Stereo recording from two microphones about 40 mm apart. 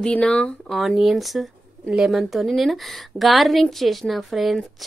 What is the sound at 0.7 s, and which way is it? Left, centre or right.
Speech, centre.